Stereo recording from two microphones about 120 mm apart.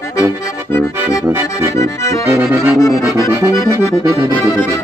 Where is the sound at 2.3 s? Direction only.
20° right (ahead or behind).